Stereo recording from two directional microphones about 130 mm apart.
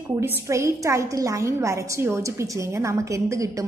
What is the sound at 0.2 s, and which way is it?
A woman's voice, 20° right (ahead or behind).